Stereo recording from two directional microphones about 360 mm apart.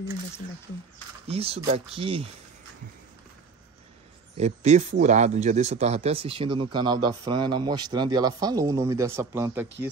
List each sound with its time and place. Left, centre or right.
1.2 s speech: centre
4.4 s speech: centre